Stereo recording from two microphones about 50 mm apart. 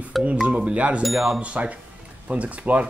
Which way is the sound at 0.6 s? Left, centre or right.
Right.